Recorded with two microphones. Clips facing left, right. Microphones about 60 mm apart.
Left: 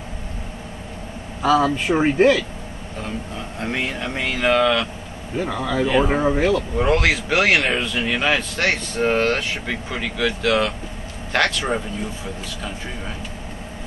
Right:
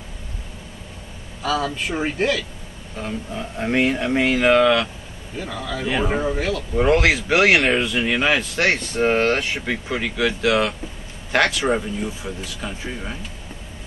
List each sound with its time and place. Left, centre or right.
1.4 s speech: centre
3.0 s speech: centre
5.4 s speech: centre
6.7 s speech: centre